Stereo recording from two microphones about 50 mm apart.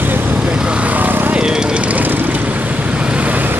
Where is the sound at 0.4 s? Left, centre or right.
Centre; by 1.3 s right.